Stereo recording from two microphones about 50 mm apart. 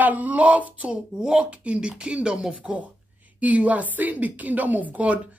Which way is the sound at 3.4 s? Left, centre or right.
Right.